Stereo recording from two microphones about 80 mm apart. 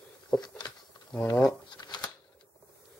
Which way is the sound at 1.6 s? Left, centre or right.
Left.